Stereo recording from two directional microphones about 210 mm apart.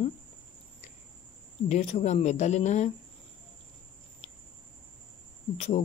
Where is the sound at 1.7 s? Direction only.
30° left (ahead or behind).